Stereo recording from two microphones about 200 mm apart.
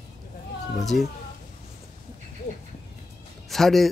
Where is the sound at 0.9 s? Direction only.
45° left (ahead or behind).